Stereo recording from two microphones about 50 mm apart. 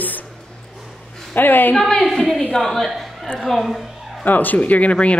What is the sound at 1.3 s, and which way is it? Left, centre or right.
Speech, left.